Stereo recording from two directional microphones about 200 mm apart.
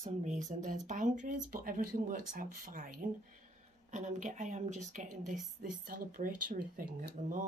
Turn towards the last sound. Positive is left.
turn(degrees=-40)  # may be behind; listen again after turning